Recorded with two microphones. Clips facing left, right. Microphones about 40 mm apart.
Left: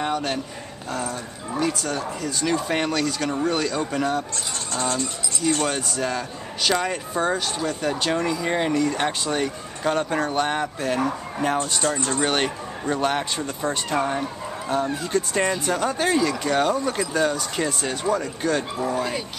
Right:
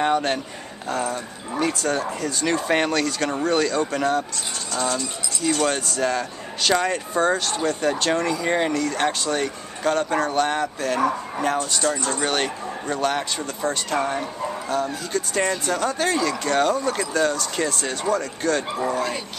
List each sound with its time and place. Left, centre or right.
0.0 s speech: centre
0.8 s speech: centre
1.8 s speech: right
2.5 s speech: centre
4.7 s speech: left
5.4 s speech: centre
8.7 s speech: centre
11.5 s speech: left
14.7 s speech: left
15.4 s speech: centre